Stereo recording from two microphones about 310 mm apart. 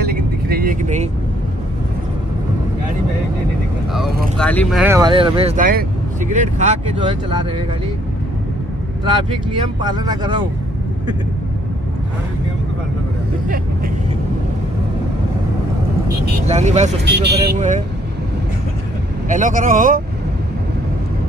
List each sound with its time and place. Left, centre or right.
0.0 s vehicle: right
3.9 s speech: centre
9.8 s speech: centre
16.1 s speech: right
17.0 s speech: right
19.2 s speech: right